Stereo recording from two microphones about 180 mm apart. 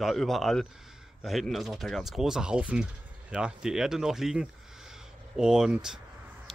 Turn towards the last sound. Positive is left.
turn(degrees=0)  # may be behind; listen again after turning